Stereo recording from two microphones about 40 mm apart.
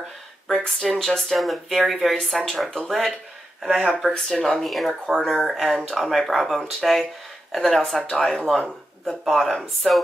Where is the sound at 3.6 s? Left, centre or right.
Centre.